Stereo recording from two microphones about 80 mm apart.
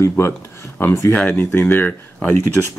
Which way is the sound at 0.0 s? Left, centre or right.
Left.